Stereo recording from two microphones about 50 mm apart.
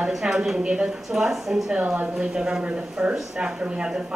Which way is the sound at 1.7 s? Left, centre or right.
Right.